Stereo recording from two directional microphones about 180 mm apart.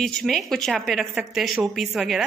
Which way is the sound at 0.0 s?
Centre (ahead or behind).